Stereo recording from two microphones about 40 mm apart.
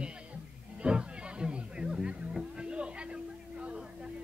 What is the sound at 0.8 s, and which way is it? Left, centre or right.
Music, right.